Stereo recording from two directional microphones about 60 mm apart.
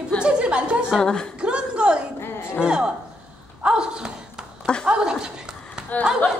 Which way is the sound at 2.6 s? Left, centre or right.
Centre.